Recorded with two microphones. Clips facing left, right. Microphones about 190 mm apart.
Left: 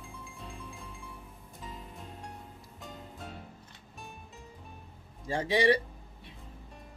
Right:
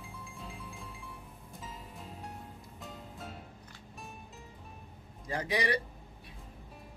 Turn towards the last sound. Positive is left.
turn(degrees=25)  # may be behind; listen again after turning